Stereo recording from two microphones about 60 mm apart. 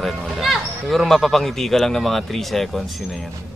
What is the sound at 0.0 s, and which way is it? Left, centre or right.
Speech, centre.